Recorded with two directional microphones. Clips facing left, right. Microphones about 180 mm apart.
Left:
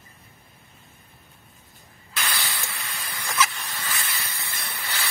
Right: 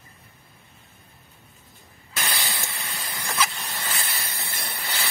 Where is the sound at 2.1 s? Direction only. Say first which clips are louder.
Right 1 dB; 20° right (ahead or behind).